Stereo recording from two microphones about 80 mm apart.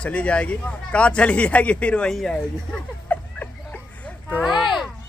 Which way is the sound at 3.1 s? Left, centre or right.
Left.